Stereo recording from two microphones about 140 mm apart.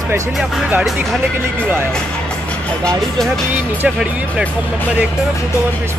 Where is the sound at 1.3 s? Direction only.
15° right (ahead or behind).